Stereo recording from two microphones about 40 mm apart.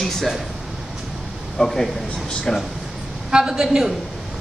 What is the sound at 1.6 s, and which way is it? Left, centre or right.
A man's voice, centre.